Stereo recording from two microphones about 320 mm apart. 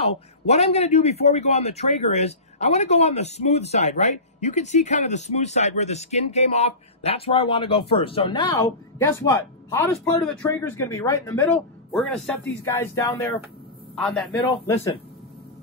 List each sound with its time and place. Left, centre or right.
0.0 s a man's voice: centre